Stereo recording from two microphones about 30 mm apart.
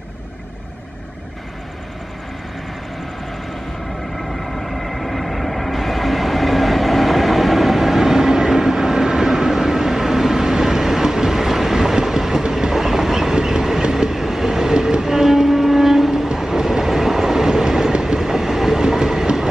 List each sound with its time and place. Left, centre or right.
4.3 s train: centre